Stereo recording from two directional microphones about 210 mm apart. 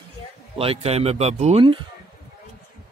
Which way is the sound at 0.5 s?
25° right (ahead or behind).